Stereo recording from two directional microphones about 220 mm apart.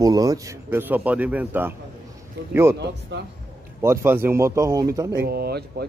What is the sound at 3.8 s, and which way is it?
Speech, 10° right (ahead or behind).